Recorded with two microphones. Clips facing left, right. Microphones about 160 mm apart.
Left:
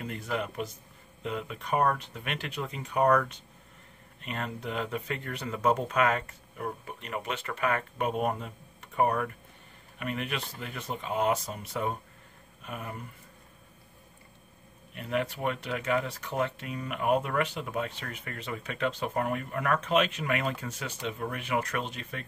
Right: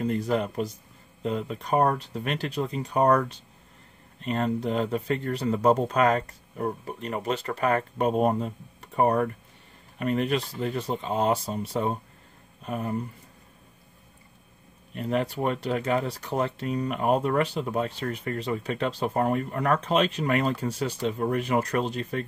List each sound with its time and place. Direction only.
0.0 s speech: 35° right (ahead or behind)
15.0 s speech: 35° right (ahead or behind)